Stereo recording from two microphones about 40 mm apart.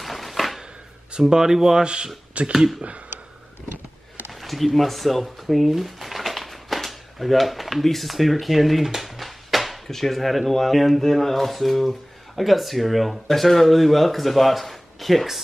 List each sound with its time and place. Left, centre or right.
0.0 s a sound: centre
1.3 s speech: centre
2.4 s speech: right
4.3 s speech: centre